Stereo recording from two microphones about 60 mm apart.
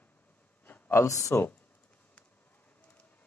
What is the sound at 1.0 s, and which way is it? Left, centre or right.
Speech, left.